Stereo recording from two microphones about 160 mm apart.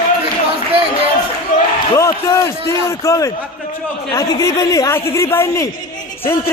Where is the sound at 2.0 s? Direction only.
20° left (ahead or behind).